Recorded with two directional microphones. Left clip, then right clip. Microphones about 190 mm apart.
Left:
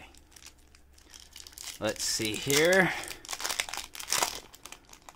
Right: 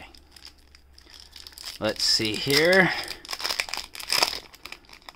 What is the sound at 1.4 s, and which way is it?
Crumpling, centre (ahead or behind).